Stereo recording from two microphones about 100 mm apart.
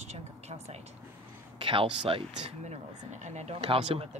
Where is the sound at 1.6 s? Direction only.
60° right (ahead or behind).